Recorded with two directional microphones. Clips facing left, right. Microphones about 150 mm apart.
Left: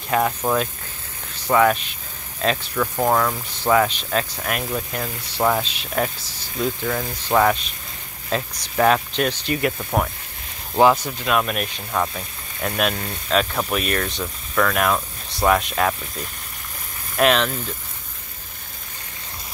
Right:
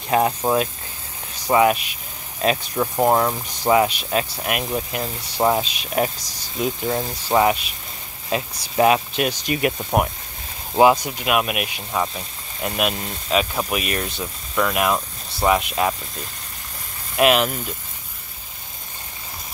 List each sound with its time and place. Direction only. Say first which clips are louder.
0.4 s speech: right 2 dB; 20° right (ahead or behind)
17.2 s speech: right 1 dB; 10° right (ahead or behind)